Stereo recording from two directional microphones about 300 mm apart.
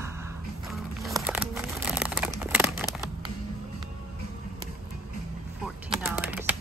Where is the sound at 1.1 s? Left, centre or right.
Centre.